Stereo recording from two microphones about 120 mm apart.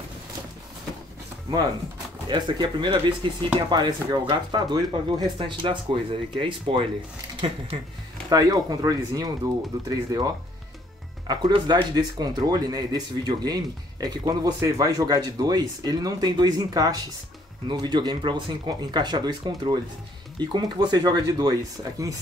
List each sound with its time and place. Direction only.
2.2 s speech: 40° right (ahead or behind)
8.3 s speech: 30° right (ahead or behind)